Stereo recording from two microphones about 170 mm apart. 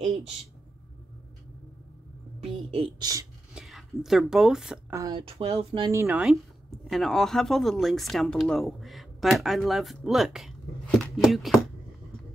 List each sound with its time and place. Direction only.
2.4 s a woman's voice: 35° right (ahead or behind)
3.5 s speech: centre (ahead or behind)
4.9 s speech: 25° right (ahead or behind)
5.9 s speech: 15° right (ahead or behind)
6.2 s speech: centre (ahead or behind)